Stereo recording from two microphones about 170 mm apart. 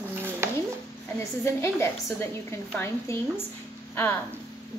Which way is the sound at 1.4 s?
15° left (ahead or behind).